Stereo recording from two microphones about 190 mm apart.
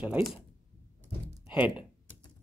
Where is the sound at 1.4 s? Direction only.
5° right (ahead or behind).